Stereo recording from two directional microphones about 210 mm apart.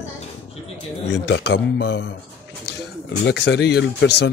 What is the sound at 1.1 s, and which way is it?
Speech, 55° left (ahead or behind).